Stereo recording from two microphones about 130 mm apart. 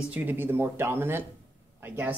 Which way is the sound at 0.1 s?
15° right (ahead or behind).